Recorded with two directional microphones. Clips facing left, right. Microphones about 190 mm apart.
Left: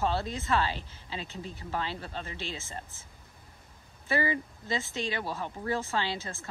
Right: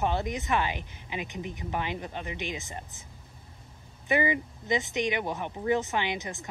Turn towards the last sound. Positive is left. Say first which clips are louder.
# right 2 dB
turn(degrees=-20)  # may be behind; listen again after turning